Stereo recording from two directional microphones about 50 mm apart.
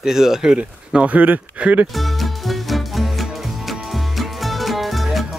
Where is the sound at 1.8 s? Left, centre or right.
Centre.